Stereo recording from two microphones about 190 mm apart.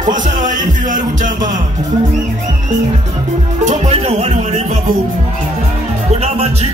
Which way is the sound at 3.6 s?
35° right (ahead or behind).